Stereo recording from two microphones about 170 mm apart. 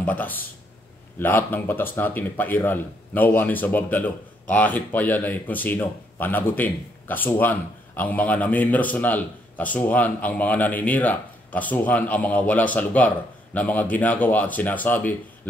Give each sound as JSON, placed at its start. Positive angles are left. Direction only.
{"t": 0.0, "sound": "speech", "side_deg": 10}